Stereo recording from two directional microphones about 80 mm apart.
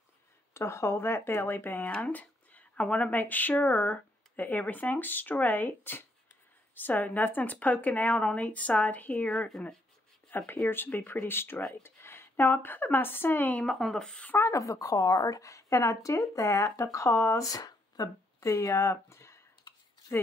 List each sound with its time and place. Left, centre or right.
0.6 s speech: left
10.3 s speech: left
13.7 s speech: centre
14.3 s a woman's voice: left
17.5 s speech: left